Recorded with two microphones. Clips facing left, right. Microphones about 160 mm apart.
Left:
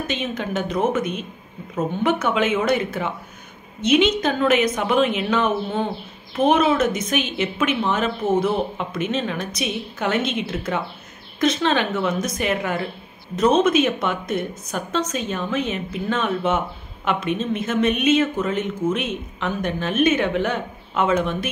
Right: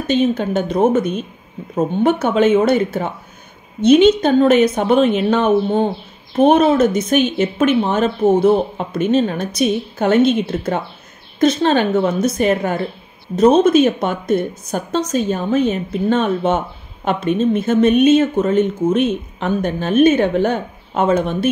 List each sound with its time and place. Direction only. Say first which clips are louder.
0.1 s a woman's voice: right 13 dB; 35° right (ahead or behind)
8.7 s a woman's voice: right 8 dB; 40° right (ahead or behind)